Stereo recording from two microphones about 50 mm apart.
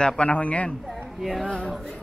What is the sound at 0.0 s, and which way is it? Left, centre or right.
Speech, left.